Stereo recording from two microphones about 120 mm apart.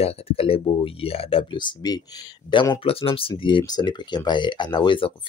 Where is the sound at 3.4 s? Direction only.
40° left (ahead or behind).